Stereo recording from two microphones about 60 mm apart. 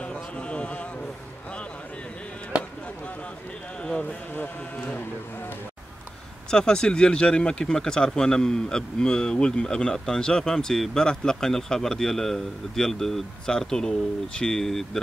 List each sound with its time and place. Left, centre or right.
0.0 s a sound: centre
4.0 s speech: left
6.5 s speech: centre